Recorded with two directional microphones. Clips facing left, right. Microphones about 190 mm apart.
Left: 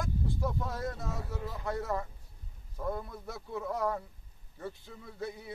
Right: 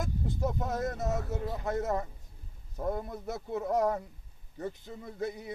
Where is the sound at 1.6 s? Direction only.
20° right (ahead or behind).